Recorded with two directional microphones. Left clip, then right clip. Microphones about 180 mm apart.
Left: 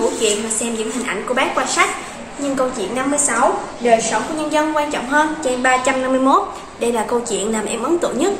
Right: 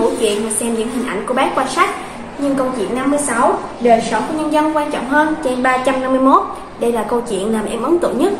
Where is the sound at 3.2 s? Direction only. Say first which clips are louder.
Right 2 dB; 5° left (ahead or behind).